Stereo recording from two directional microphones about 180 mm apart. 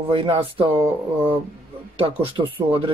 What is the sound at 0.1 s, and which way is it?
Speech, 30° right (ahead or behind).